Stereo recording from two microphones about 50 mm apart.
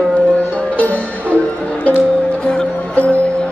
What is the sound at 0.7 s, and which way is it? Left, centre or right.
Music, left.